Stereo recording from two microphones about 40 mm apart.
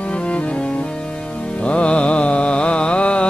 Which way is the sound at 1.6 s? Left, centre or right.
Left.